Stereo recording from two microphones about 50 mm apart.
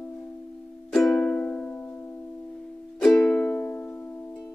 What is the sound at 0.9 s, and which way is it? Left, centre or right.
Music, centre.